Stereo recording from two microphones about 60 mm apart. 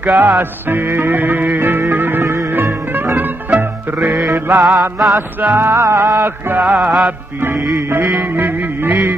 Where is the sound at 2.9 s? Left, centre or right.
Right.